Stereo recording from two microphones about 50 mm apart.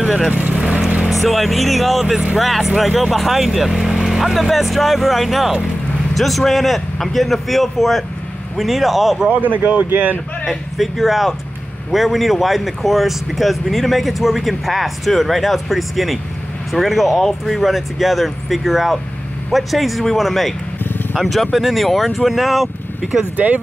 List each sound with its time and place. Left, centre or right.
0.0 s vehicle: centre
0.3 s speech: right
0.6 s vehicle: centre
1.0 s speech: centre
9.3 s speech: right
10.8 s speech: centre
23.3 s speech: right